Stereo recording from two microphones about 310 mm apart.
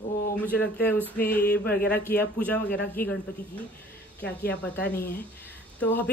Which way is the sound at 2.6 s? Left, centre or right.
Left.